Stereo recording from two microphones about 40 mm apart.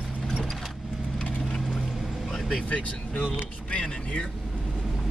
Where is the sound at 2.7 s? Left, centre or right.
Left.